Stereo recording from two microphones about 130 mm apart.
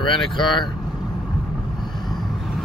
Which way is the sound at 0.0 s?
40° left (ahead or behind).